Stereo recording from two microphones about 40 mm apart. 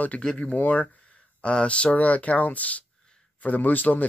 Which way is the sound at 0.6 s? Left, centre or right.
Left.